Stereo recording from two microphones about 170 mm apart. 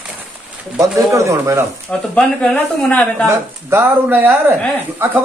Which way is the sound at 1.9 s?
5° left (ahead or behind).